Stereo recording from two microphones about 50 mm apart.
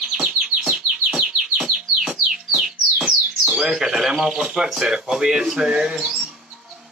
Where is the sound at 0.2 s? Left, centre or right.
Centre.